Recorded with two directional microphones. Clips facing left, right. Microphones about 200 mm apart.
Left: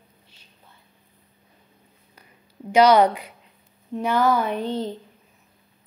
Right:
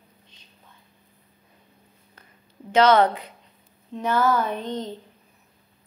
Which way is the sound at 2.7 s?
10° left (ahead or behind).